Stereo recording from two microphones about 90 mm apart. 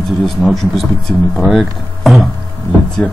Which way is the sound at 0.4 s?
Centre (ahead or behind).